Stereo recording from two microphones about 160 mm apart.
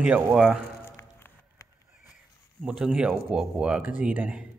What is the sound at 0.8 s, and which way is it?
Music, 15° left (ahead or behind).